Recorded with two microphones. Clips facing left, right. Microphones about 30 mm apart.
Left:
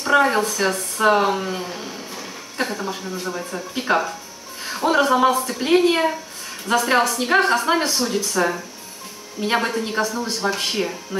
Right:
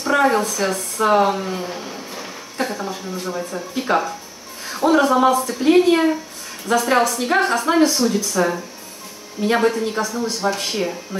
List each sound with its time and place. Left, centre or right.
0.0 s speech: centre